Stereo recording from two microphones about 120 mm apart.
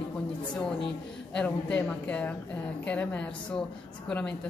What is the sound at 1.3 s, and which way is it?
A woman's voice, 10° left (ahead or behind).